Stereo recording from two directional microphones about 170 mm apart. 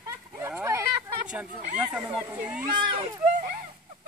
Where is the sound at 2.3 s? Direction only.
10° right (ahead or behind).